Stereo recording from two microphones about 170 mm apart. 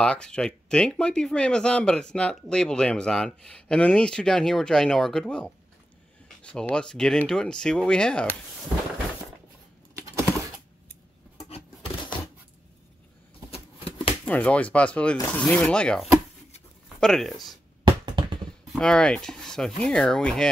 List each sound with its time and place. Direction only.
0.0 s speech: 5° left (ahead or behind)
9.9 s typing: 15° right (ahead or behind)
13.5 s a sound: 35° left (ahead or behind)
14.2 s speech: 10° left (ahead or behind)
17.8 s a sound: 25° right (ahead or behind)
18.7 s speech: 5° left (ahead or behind)